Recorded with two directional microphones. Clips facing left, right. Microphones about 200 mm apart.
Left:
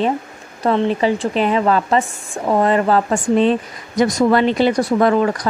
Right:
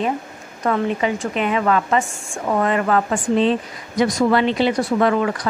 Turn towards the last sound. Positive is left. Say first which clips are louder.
# left 3 dB
turn(degrees=40)  # may be behind; listen again after turning